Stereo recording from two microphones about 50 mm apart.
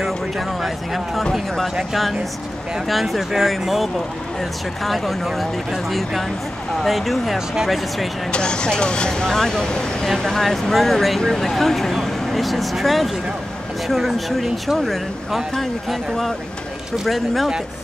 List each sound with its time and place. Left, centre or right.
0.6 s speech: centre
2.9 s speech: centre
8.3 s speech: centre